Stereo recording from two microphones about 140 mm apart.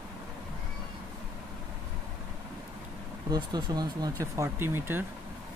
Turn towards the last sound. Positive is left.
turn(degrees=-15)  # may be behind; listen again after turning